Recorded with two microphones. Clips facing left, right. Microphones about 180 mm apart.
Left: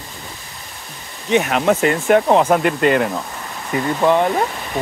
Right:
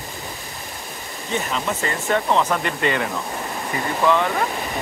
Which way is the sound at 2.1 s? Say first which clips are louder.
Left 5 dB; 45° left (ahead or behind).